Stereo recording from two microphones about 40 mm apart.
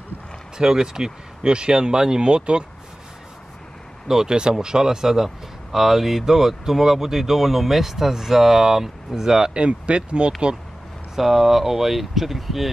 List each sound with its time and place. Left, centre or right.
0.6 s speech: centre
4.1 s speech: centre
9.5 s speech: right
11.1 s speech: centre